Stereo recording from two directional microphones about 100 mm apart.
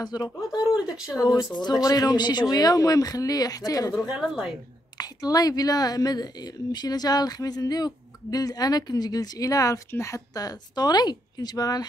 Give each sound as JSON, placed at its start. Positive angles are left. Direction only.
{"t": 0.0, "sound": "a woman's voice", "side_deg": 40}
{"t": 4.1, "sound": "a woman's voice", "side_deg": -5}
{"t": 4.9, "sound": "a woman's voice", "side_deg": 40}